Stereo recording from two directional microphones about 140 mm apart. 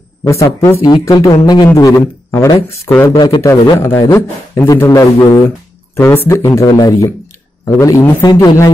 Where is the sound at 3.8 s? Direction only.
20° left (ahead or behind).